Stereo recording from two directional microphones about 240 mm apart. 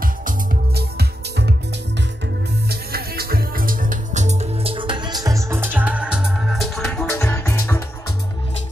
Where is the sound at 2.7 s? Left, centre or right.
Right; by 7.8 s centre.